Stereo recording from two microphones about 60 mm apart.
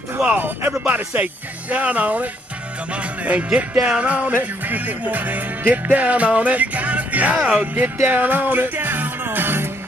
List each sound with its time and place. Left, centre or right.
0.4 s music: right